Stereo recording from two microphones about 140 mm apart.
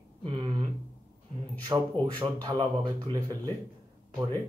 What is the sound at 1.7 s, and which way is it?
Speech, 30° right (ahead or behind).